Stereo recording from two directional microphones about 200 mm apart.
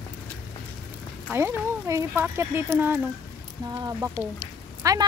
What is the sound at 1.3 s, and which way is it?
Speech, 10° right (ahead or behind).